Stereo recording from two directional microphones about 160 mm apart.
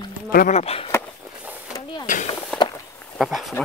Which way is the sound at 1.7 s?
20° left (ahead or behind).